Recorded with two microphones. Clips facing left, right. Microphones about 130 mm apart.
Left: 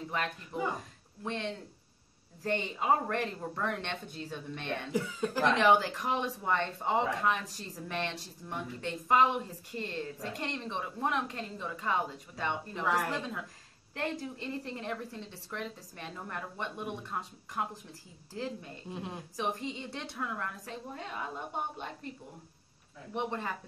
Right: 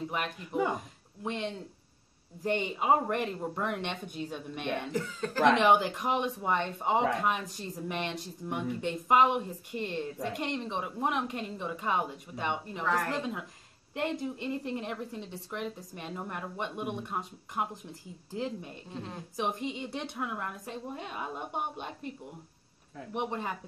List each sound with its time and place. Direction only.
0.1 s speech: 15° right (ahead or behind)
4.9 s speech: 15° left (ahead or behind)
5.4 s speech: 20° right (ahead or behind)
12.8 s speech: 10° left (ahead or behind)
13.9 s speech: 15° right (ahead or behind)
18.9 s speech: 15° left (ahead or behind)
19.3 s speech: 15° right (ahead or behind)
23.1 s speech: 15° right (ahead or behind)